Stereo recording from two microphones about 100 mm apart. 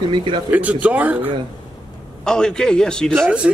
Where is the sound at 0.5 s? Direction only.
15° right (ahead or behind).